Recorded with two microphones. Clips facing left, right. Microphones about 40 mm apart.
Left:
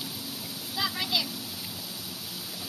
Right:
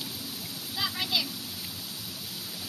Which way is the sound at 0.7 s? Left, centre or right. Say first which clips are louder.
Left 1 dB; centre.